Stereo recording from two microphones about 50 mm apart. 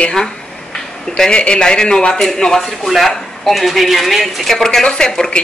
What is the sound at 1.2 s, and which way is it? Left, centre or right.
Speech, centre.